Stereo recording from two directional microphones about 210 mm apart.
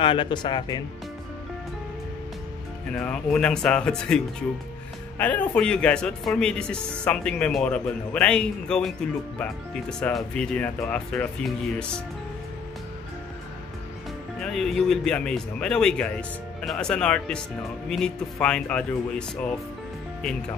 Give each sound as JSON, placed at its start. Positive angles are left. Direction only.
{"t": 0.0, "sound": "speech", "side_deg": 25}
{"t": 2.9, "sound": "speech", "side_deg": 5}
{"t": 5.2, "sound": "speech", "side_deg": 5}
{"t": 14.4, "sound": "speech", "side_deg": 0}